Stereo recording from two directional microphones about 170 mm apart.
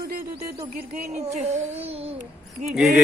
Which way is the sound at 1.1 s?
40° right (ahead or behind).